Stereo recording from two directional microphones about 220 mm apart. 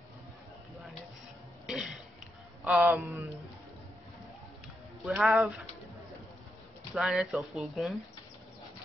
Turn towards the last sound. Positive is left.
turn(degrees=0)  # may be behind; listen again after turning